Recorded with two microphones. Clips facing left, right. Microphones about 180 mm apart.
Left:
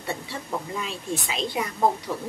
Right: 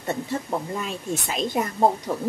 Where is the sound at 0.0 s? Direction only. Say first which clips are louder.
Right 5 dB; 45° right (ahead or behind).